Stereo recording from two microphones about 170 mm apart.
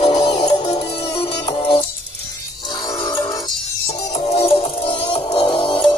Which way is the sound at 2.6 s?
25° left (ahead or behind).